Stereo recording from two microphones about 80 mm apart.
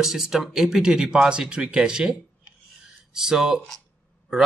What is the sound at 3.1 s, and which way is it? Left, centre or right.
Speech, centre.